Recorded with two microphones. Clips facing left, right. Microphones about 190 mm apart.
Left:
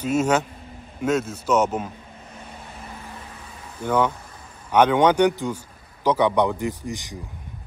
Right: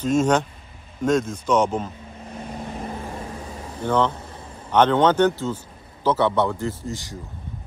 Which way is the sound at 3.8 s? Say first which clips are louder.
Even; 10° left (ahead or behind).